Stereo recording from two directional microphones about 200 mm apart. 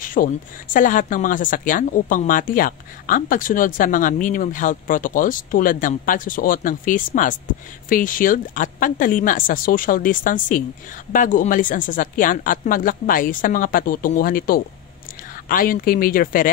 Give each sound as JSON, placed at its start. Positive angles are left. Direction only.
{"t": 0.0, "sound": "speech", "side_deg": 45}